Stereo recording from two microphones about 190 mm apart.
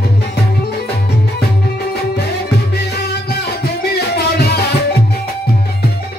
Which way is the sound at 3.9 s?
60° left (ahead or behind).